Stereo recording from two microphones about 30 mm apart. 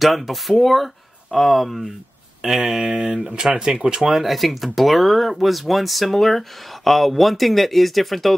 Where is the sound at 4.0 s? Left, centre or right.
Centre.